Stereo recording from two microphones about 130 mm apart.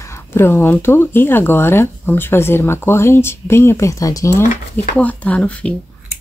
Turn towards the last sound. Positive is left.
turn(degrees=10)  # may be behind; listen again after turning